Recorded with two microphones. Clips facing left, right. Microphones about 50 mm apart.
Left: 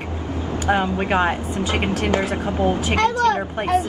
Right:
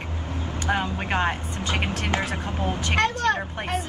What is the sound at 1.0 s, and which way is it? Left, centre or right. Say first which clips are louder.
Speech: left 5 dB; centre.